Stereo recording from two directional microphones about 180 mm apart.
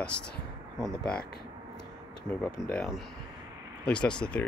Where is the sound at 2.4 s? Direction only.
5° left (ahead or behind).